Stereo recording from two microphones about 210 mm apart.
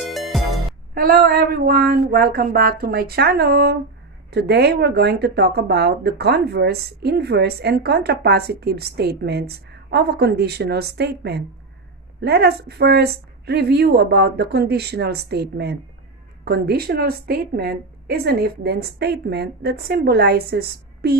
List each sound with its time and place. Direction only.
0.1 s music: centre (ahead or behind)
0.9 s speech: 45° right (ahead or behind)